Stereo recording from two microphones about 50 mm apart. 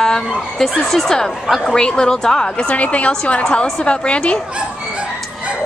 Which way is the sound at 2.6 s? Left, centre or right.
Left.